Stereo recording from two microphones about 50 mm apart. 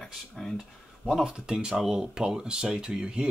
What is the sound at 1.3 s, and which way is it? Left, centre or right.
Speech, centre.